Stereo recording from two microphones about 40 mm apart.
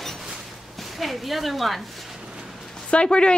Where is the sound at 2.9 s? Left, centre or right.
Left.